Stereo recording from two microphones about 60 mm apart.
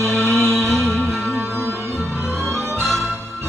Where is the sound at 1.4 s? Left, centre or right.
Right.